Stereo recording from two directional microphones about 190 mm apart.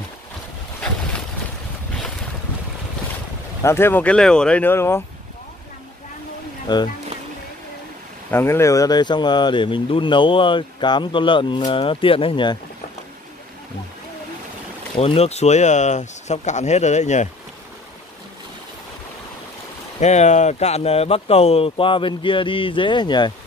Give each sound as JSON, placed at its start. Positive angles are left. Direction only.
{"t": 3.6, "sound": "speech", "side_deg": 10}
{"t": 6.7, "sound": "speech", "side_deg": 20}
{"t": 8.3, "sound": "speech", "side_deg": 15}
{"t": 15.0, "sound": "speech", "side_deg": 30}
{"t": 20.0, "sound": "speech", "side_deg": 35}